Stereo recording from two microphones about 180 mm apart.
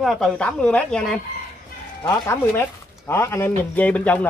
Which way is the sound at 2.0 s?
15° left (ahead or behind).